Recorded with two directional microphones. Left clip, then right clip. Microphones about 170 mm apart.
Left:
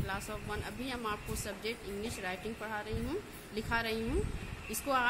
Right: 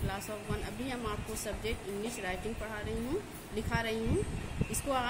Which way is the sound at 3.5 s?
50° left (ahead or behind).